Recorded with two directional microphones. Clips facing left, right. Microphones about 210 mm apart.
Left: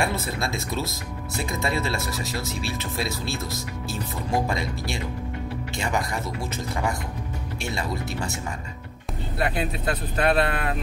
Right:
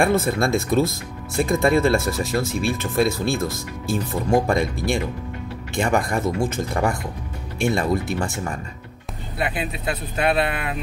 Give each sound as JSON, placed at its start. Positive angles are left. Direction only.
{"t": 0.0, "sound": "speech", "side_deg": -50}
{"t": 9.4, "sound": "speech", "side_deg": -5}